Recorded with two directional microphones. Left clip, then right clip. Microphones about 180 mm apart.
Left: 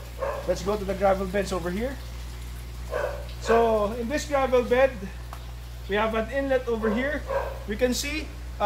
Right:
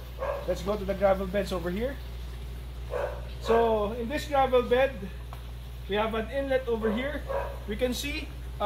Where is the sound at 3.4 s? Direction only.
10° right (ahead or behind).